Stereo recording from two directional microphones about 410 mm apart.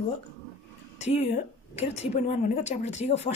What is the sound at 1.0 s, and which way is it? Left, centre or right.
Speech, centre.